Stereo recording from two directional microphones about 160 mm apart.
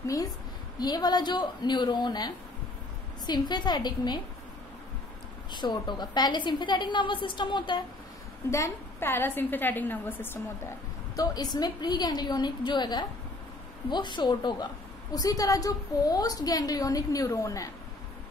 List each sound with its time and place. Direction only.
0.0 s a woman's voice: 20° left (ahead or behind)
5.5 s a woman's voice: 30° left (ahead or behind)
8.5 s a woman's voice: 20° left (ahead or behind)
11.1 s a woman's voice: 25° left (ahead or behind)